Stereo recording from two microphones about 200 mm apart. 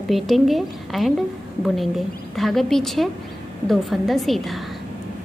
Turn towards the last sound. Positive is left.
turn(degrees=0)  # may be behind; listen again after turning